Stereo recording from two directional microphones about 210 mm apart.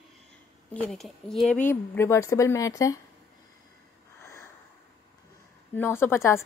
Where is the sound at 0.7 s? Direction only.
5° left (ahead or behind).